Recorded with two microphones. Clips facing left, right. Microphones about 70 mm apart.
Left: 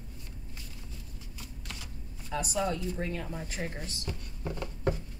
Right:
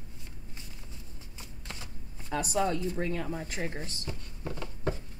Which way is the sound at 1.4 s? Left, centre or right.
Right.